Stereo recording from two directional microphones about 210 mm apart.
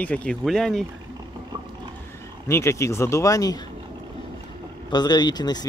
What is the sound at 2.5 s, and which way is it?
Speech, 15° left (ahead or behind).